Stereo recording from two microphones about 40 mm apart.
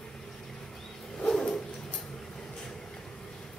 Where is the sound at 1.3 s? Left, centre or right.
Centre.